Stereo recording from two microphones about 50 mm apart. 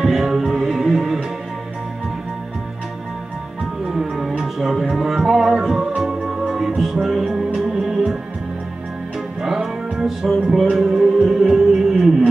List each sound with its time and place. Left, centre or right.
0.0 s music: centre
3.8 s music: centre
9.4 s music: centre